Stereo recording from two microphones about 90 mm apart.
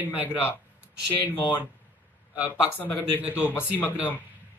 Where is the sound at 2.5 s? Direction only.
25° left (ahead or behind).